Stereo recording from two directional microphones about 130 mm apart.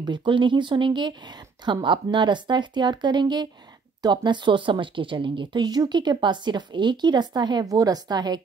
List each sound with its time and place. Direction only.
0.0 s speech: 35° right (ahead or behind)